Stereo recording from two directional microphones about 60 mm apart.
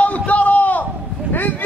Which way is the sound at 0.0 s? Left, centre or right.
Left.